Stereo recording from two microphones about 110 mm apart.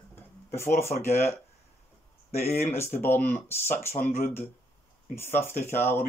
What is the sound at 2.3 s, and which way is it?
Speech, 90° left.